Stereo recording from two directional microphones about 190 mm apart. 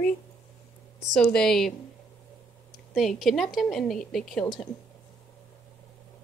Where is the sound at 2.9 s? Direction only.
Centre (ahead or behind).